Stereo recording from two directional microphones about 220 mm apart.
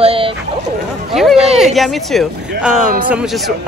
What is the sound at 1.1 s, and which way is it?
A woman's voice, centre (ahead or behind).